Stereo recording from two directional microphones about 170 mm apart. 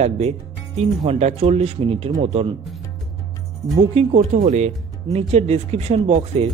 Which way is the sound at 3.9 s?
40° right (ahead or behind).